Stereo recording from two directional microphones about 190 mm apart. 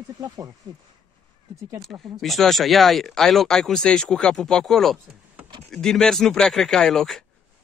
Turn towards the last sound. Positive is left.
turn(degrees=0)  # may be behind; listen again after turning